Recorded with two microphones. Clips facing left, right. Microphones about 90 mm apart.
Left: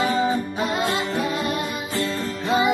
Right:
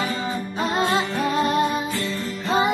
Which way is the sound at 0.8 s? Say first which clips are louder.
Right 4 dB; 35° right (ahead or behind).